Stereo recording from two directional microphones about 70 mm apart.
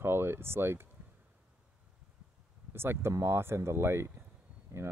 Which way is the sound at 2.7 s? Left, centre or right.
Right.